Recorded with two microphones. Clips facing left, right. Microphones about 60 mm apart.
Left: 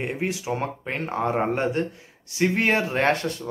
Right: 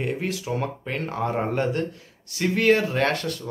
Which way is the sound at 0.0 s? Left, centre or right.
Left.